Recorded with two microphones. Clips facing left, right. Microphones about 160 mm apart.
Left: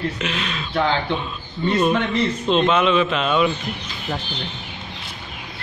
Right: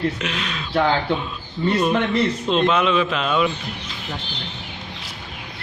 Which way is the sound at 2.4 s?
Centre (ahead or behind).